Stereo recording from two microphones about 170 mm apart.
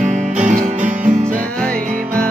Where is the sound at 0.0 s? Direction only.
45° right (ahead or behind).